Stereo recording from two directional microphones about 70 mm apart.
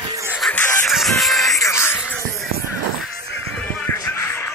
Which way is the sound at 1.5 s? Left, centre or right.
Left.